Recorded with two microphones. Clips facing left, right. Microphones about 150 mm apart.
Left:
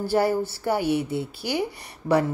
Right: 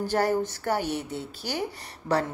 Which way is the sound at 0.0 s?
10° left (ahead or behind).